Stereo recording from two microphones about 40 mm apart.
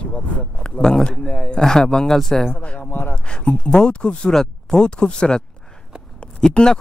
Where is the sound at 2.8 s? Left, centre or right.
Left.